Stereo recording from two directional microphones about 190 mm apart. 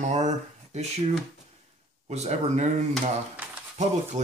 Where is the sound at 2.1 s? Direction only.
35° right (ahead or behind).